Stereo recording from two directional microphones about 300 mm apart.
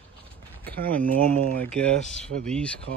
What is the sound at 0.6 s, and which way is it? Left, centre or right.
Speech, right.